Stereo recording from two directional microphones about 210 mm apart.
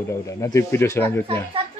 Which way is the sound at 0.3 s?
15° left (ahead or behind).